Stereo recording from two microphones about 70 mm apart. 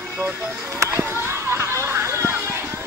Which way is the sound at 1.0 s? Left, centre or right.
Right.